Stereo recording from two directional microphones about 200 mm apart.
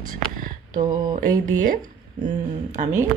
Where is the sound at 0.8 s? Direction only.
20° right (ahead or behind).